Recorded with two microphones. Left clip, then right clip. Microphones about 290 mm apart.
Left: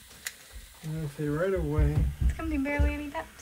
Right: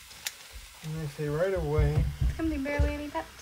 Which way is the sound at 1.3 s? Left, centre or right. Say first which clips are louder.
Right 1 dB; right.